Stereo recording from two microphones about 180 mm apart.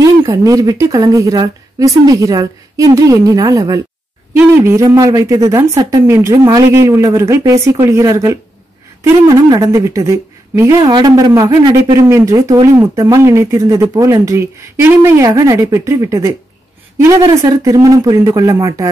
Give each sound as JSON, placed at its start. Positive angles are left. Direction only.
{"t": 0.0, "sound": "a woman's voice", "side_deg": -20}